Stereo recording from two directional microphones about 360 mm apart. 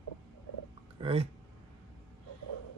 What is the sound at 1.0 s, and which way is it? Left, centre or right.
Speech, centre.